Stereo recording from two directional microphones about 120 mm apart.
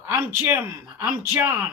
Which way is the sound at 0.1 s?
20° right (ahead or behind).